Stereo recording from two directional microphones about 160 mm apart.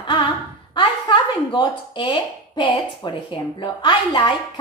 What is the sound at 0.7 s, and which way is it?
A woman's voice, 30° left (ahead or behind).